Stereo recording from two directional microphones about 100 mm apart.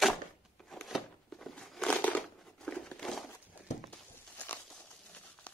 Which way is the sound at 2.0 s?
15° left (ahead or behind).